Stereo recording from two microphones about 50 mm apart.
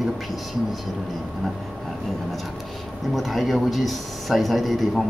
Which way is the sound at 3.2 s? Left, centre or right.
Centre.